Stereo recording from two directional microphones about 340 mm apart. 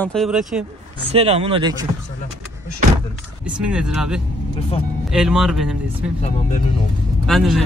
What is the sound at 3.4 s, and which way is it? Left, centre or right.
Speech, centre.